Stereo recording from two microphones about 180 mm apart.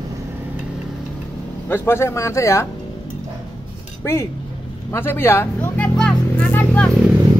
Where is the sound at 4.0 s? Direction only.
15° left (ahead or behind).